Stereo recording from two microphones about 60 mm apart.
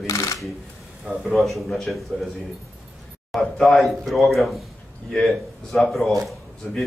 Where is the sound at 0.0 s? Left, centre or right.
Left.